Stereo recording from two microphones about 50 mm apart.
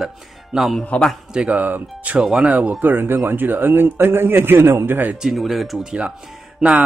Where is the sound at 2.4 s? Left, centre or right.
Right.